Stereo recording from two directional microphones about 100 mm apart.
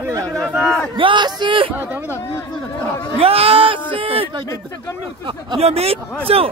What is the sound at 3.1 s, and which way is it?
Speech, 75° right (ahead or behind).